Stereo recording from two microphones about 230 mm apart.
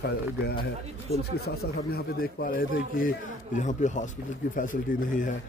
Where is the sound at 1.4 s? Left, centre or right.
Left.